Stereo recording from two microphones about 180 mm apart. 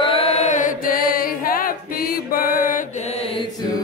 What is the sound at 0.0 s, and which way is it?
Chant, 30° left (ahead or behind).